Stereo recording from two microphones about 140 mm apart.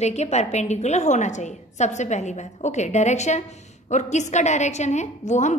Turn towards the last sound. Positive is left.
turn(degrees=60)  # may be behind; listen again after turning